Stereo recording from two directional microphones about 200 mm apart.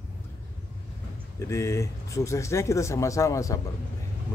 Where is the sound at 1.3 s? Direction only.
15° left (ahead or behind).